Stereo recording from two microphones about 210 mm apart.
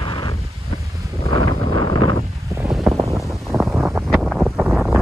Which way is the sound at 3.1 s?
Centre (ahead or behind).